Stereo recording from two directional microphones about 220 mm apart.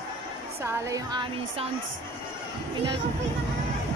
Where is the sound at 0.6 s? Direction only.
15° right (ahead or behind).